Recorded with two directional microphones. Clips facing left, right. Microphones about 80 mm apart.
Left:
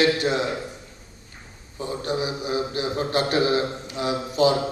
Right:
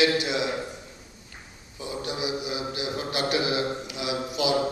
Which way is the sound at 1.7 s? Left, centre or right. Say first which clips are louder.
Left 5 dB; left.